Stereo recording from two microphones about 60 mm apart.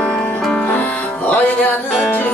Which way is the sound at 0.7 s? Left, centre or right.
Left.